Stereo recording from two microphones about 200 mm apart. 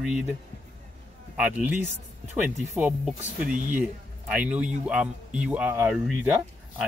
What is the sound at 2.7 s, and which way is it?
Speech, 5° right (ahead or behind).